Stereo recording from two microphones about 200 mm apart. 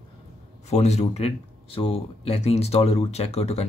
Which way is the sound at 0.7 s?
35° left (ahead or behind).